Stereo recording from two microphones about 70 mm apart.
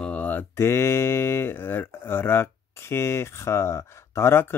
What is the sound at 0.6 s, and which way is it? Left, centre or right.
Speech, left.